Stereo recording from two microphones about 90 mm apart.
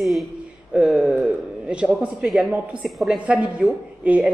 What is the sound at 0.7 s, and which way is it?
Speech, 10° right (ahead or behind).